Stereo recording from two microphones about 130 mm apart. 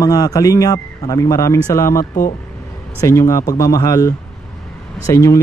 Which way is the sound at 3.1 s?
25° left (ahead or behind).